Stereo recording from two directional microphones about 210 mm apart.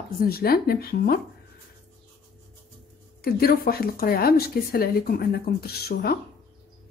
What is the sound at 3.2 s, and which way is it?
A woman's voice, 45° left (ahead or behind).